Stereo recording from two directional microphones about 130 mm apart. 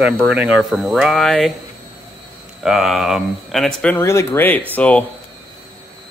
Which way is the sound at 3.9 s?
20° left (ahead or behind).